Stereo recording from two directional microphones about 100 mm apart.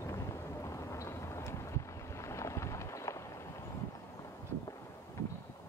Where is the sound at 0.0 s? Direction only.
30° left (ahead or behind).